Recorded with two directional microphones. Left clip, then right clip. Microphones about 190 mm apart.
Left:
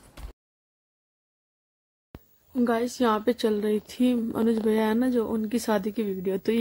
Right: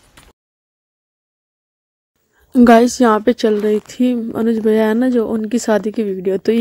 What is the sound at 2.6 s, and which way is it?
A woman's voice, 50° right (ahead or behind).